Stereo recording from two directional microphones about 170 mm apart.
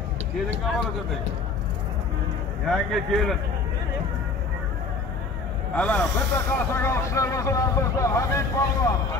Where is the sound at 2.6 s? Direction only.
Centre (ahead or behind).